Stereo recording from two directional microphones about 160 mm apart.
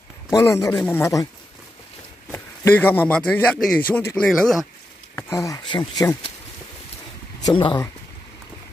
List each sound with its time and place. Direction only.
0.3 s speech: 20° left (ahead or behind)
2.3 s speech: 15° left (ahead or behind)
4.3 s speech: centre (ahead or behind)
5.1 s speech: 20° left (ahead or behind)
7.4 s speech: 30° left (ahead or behind)